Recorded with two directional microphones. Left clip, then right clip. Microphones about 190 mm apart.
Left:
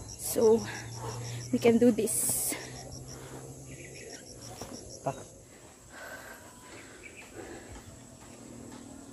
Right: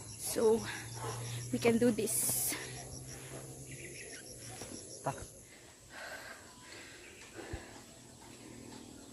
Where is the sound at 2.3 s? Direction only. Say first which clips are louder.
Left 3 dB; 20° left (ahead or behind).